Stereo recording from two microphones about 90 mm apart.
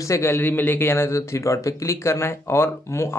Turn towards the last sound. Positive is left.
turn(degrees=30)  # may be behind; listen again after turning